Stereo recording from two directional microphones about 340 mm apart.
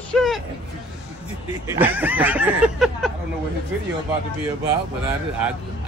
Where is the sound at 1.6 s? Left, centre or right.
Centre.